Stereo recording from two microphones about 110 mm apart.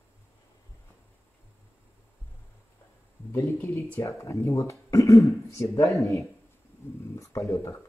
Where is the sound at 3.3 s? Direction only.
25° left (ahead or behind).